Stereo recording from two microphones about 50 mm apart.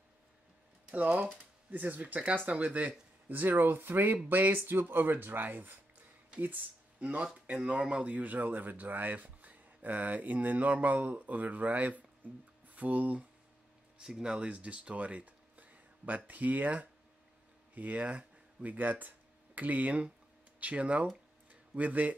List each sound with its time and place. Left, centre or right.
0.9 s speech: right
14.0 s speech: centre
21.5 s a sound: right